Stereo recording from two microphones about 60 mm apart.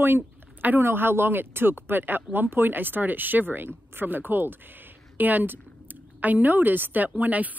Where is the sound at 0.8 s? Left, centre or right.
Right.